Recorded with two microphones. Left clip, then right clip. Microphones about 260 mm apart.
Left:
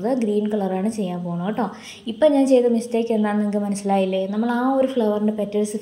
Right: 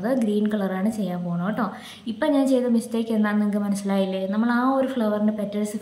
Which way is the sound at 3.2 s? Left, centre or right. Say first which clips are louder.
Left 2 dB; centre.